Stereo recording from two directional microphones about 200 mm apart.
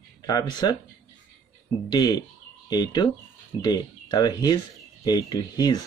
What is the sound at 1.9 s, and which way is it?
Speech, 20° left (ahead or behind).